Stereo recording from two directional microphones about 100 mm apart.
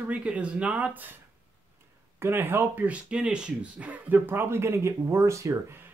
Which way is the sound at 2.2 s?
20° right (ahead or behind).